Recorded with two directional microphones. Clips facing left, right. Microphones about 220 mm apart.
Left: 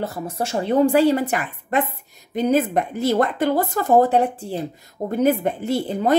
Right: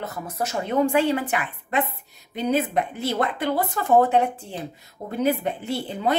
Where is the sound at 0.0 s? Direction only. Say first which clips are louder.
Left 4 dB; 30° left (ahead or behind).